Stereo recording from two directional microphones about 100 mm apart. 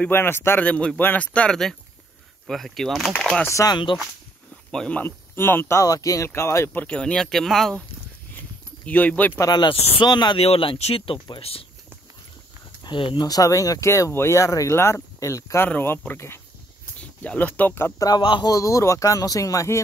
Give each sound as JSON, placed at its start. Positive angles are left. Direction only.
{"t": 0.1, "sound": "speech", "side_deg": 25}
{"t": 0.7, "sound": "speech", "side_deg": 10}
{"t": 3.4, "sound": "speech", "side_deg": 30}
{"t": 3.7, "sound": "speech", "side_deg": 55}
{"t": 4.6, "sound": "speech", "side_deg": 10}
{"t": 5.0, "sound": "speech", "side_deg": 20}
{"t": 8.8, "sound": "speech", "side_deg": 15}
{"t": 9.4, "sound": "speech", "side_deg": 45}
{"t": 10.4, "sound": "speech", "side_deg": 70}
{"t": 12.8, "sound": "speech", "side_deg": 55}
{"t": 17.9, "sound": "speech", "side_deg": 40}
{"t": 18.2, "sound": "speech", "side_deg": 50}
{"t": 18.5, "sound": "speech", "side_deg": 30}